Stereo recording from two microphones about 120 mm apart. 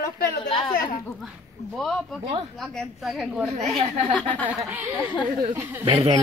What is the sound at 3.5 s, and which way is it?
Speech, 55° right (ahead or behind).